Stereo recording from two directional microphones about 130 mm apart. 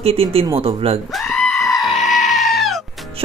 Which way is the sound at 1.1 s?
Centre (ahead or behind).